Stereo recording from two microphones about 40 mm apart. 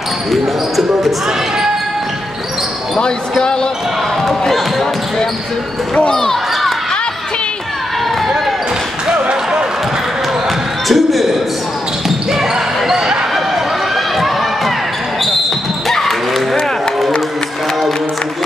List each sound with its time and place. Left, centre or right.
0.3 s basketball bounce: centre
3.0 s speech: left
4.3 s basketball bounce: centre
6.0 s basketball bounce: centre
9.0 s basketball bounce: right
10.9 s a sound: centre
12.3 s basketball bounce: centre
14.1 s run: centre
15.9 s basketball bounce: centre